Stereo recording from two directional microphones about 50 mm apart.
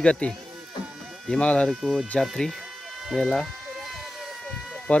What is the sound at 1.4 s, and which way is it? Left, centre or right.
Speech, left.